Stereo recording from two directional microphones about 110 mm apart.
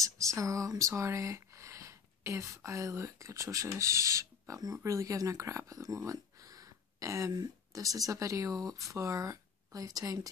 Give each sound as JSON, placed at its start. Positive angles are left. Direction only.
{"t": 0.0, "sound": "speech", "side_deg": -30}